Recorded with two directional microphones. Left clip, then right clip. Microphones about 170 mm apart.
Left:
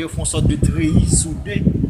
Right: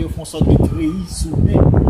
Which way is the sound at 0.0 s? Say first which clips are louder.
Right 2 dB; 10° right (ahead or behind).